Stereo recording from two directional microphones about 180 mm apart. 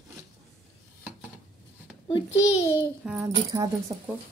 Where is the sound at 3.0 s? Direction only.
5° right (ahead or behind).